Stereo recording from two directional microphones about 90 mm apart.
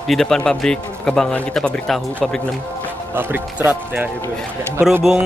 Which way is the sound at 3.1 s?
25° right (ahead or behind).